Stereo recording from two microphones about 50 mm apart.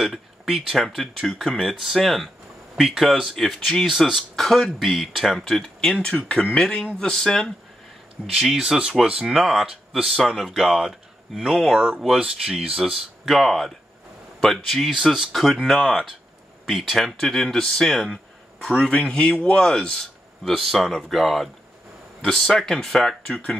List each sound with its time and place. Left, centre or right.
0.0 s speech: centre
4.6 s speech: centre
5.9 s speech: left
8.5 s speech: centre
9.3 s speech: centre
18.8 s speech: left